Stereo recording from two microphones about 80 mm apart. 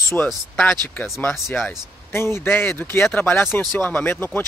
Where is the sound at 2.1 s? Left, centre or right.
Left.